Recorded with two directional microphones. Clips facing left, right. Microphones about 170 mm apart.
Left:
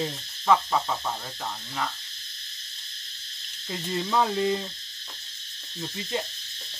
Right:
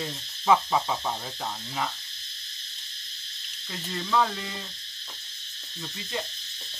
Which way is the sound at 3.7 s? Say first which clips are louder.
Left 2 dB; 20° left (ahead or behind).